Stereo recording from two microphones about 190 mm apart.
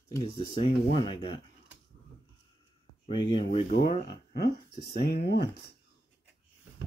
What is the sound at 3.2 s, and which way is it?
Speech, 25° left (ahead or behind).